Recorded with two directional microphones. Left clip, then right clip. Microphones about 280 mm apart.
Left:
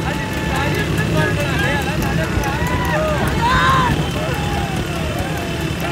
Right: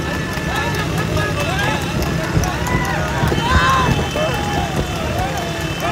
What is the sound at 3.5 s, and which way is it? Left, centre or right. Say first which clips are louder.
Vehicle: even; centre.